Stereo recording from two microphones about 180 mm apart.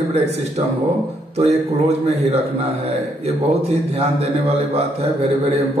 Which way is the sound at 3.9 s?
35° right (ahead or behind).